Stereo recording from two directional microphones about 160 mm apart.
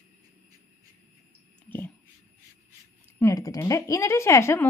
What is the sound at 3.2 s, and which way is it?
A woman's voice, 20° left (ahead or behind).